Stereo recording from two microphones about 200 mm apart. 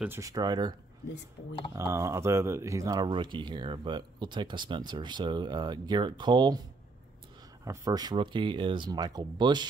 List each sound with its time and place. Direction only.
0.0 s speech: 15° right (ahead or behind)
1.8 s speech: 15° right (ahead or behind)
7.6 s speech: 15° right (ahead or behind)